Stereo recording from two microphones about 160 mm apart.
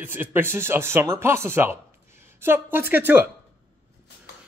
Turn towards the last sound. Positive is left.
turn(degrees=-15)  # may be behind; listen again after turning